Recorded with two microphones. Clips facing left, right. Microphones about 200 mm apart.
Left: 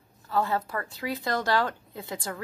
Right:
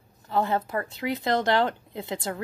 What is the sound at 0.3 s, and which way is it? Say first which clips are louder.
Speech: right 2 dB; 20° right (ahead or behind).